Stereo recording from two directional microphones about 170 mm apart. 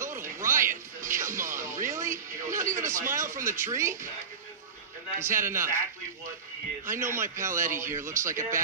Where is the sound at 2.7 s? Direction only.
15° right (ahead or behind).